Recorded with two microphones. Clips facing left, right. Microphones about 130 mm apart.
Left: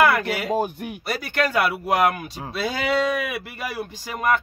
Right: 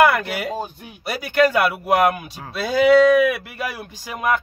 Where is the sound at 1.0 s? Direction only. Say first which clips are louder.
Right 7 dB; 5° right (ahead or behind).